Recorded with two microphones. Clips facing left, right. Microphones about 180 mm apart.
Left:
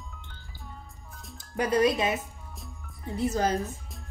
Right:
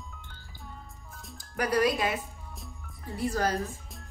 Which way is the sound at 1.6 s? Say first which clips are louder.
Left 2 dB; 20° left (ahead or behind).